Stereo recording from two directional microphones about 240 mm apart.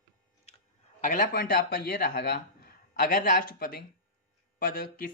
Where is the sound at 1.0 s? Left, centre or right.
Left.